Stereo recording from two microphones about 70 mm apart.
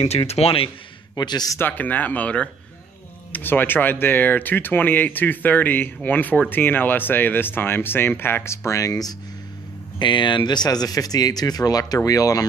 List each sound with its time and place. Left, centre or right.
1.1 s a man's voice: left
1.6 s speech: left
8.6 s speech: left
9.9 s speech: left